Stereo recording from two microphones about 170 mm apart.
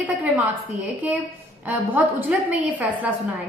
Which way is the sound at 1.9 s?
10° right (ahead or behind).